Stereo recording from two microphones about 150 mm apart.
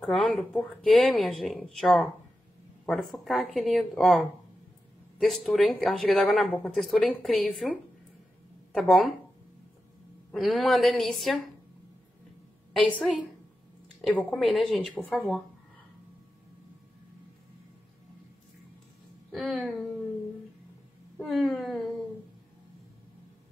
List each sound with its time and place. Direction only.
0.0 s speech: 5° left (ahead or behind)
8.7 s speech: centre (ahead or behind)
10.3 s speech: centre (ahead or behind)
14.1 s speech: 5° left (ahead or behind)
19.3 s a sound: centre (ahead or behind)
21.2 s speech: centre (ahead or behind)